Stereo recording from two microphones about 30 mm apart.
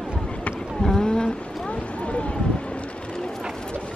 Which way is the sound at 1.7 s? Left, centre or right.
Left.